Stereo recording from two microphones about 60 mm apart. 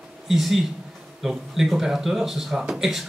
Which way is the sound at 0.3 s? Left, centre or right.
Centre.